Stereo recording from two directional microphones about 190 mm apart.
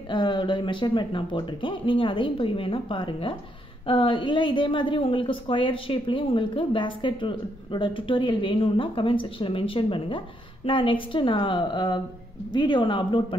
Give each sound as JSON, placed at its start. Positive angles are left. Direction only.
{"t": 0.1, "sound": "a woman's voice", "side_deg": 25}